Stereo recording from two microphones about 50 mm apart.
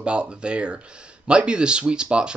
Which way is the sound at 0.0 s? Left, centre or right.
Right.